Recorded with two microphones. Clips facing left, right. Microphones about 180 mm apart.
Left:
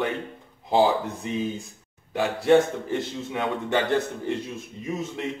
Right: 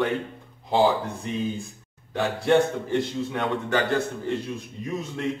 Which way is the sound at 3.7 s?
20° left (ahead or behind).